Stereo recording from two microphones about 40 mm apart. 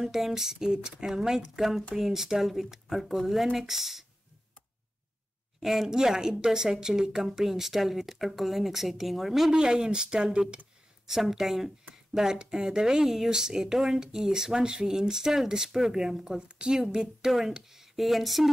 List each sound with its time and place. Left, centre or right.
0.0 s speech: centre
5.6 s speech: centre
9.5 s speech: centre
11.1 s speech: centre
16.4 s a woman's voice: right; by 18.5 s centre